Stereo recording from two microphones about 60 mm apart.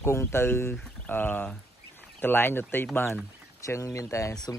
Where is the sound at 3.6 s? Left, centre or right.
Left.